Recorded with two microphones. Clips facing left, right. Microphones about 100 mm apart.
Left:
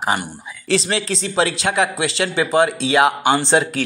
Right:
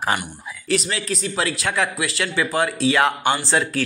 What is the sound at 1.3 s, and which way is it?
Speech, 25° left (ahead or behind).